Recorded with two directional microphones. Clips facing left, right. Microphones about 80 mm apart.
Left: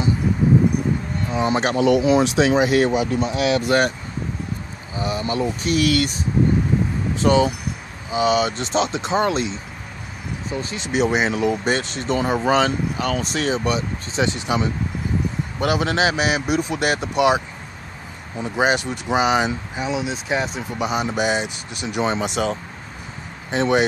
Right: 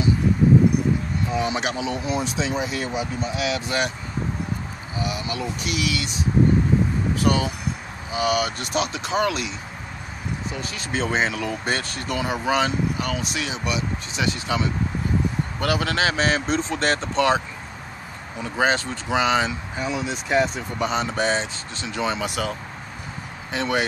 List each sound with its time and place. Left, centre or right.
1.4 s speech: left
1.8 s speech: left
4.9 s speech: left
7.2 s speech: left
12.2 s speech: left; by 17.4 s centre
18.4 s speech: centre
21.8 s speech: left
23.5 s speech: left